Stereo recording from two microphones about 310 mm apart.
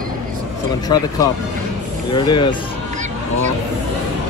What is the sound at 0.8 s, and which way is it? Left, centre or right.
Speech, centre.